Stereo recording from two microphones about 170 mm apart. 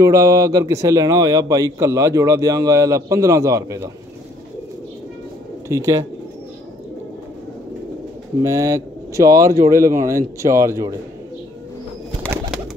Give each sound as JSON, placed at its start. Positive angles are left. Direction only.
{"t": 0.0, "sound": "a man's voice", "side_deg": -20}
{"t": 5.7, "sound": "speech", "side_deg": -20}
{"t": 8.4, "sound": "speech", "side_deg": -20}